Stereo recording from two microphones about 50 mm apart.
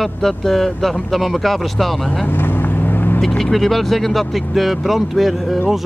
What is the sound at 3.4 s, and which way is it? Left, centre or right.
Speech, centre.